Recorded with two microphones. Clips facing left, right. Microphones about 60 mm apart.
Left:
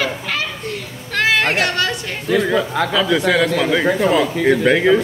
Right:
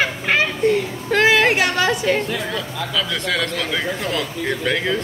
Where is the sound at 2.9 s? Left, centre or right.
Centre.